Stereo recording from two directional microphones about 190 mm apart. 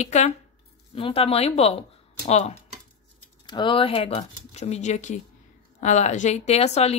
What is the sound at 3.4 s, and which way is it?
Speech, 25° left (ahead or behind).